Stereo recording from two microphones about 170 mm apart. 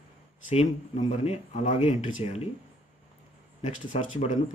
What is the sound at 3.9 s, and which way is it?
Speech, 40° left (ahead or behind).